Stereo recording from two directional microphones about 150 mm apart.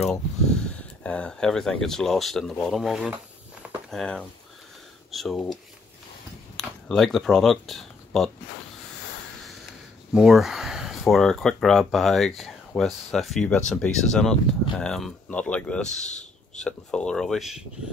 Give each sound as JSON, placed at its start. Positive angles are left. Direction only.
{"t": 0.0, "sound": "speech", "side_deg": 5}
{"t": 6.5, "sound": "speech", "side_deg": 0}
{"t": 10.1, "sound": "speech", "side_deg": -5}
{"t": 16.0, "sound": "a sound", "side_deg": 50}
{"t": 16.6, "sound": "speech", "side_deg": 5}